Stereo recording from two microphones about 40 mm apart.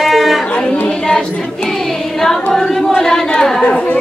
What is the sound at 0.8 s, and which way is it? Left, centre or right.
Choir, centre.